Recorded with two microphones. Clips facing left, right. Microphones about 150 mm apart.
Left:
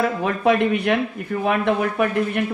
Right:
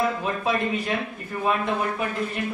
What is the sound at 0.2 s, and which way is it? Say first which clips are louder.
A man's voice: left 7 dB; 65° left (ahead or behind).